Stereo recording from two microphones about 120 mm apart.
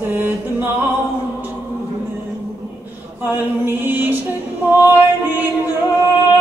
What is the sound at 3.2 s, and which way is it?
Music, 20° right (ahead or behind).